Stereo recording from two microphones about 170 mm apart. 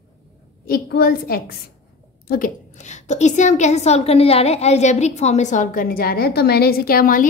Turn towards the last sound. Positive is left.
turn(degrees=55)  # may be behind; listen again after turning